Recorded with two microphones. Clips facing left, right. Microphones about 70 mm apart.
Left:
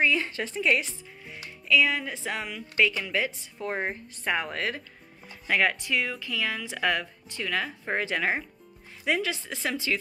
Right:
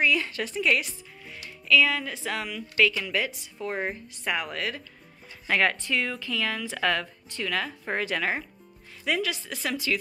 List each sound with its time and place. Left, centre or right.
0.0 s a woman's voice: left
5.5 s speech: centre